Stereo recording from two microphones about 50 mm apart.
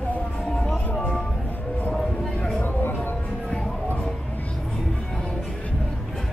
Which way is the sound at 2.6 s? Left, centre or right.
Left.